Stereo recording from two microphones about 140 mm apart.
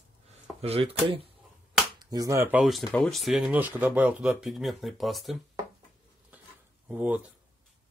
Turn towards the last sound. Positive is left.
turn(degrees=-10)  # may be behind; listen again after turning